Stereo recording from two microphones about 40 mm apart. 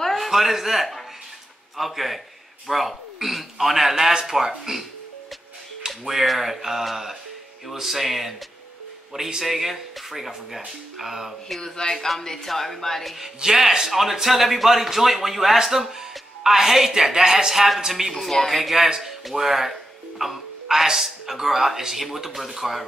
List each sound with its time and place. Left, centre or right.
0.0 s a man's voice: centre
5.9 s a man's voice: centre
11.6 s speech: centre
13.2 s a man's voice: centre